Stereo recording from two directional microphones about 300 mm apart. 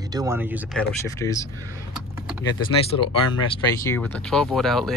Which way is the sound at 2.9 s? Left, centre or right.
Left.